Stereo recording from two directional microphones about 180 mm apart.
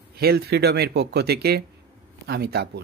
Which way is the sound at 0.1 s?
60° right (ahead or behind).